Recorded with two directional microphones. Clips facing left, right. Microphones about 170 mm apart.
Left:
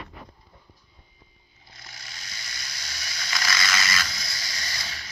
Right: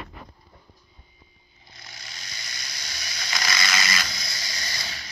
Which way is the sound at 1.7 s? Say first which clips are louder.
Right 1 dB; 20° right (ahead or behind).